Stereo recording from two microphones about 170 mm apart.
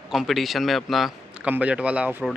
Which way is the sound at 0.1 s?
Centre (ahead or behind).